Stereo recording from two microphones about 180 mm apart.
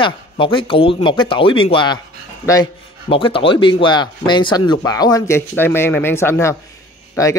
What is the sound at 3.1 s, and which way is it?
Speech, 30° left (ahead or behind).